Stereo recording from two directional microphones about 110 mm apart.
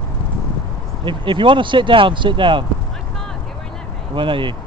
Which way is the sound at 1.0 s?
50° right (ahead or behind).